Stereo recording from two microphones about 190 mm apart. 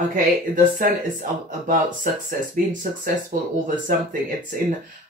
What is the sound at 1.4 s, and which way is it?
Speech, 45° right (ahead or behind).